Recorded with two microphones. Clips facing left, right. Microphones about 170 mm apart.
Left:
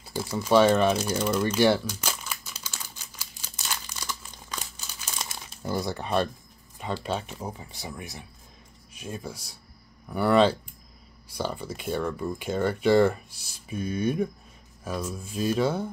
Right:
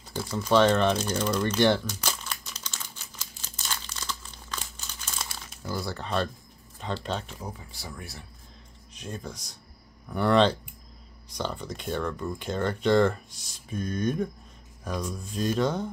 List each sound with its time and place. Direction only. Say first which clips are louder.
0.0 s crumpling: left 1 dB; 10° left (ahead or behind)
5.5 s speech: left 4 dB; 25° left (ahead or behind); by 7.3 s 10° left (ahead or behind)
7.4 s speech: left 3 dB; 20° left (ahead or behind)